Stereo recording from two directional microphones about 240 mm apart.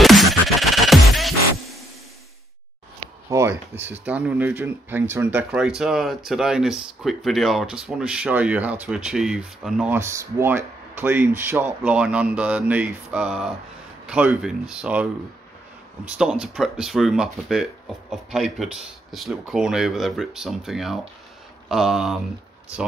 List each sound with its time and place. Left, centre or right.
0.0 s music: centre
3.3 s speech: centre
16.1 s speech: centre